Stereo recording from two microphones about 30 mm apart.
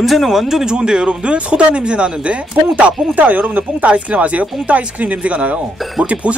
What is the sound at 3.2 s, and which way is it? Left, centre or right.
Speech, right.